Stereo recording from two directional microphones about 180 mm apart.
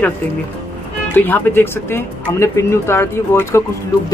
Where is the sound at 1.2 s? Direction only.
10° left (ahead or behind).